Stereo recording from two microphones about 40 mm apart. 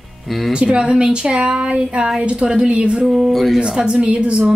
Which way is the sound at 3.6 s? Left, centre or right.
Right.